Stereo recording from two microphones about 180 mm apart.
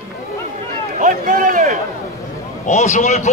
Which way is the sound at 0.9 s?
45° right (ahead or behind).